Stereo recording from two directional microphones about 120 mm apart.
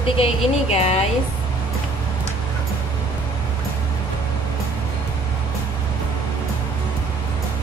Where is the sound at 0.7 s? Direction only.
60° left (ahead or behind).